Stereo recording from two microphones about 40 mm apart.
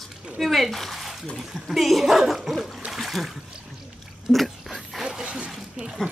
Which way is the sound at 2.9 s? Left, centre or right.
Centre.